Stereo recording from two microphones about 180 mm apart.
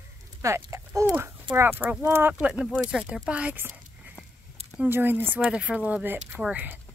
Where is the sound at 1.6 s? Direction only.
10° right (ahead or behind).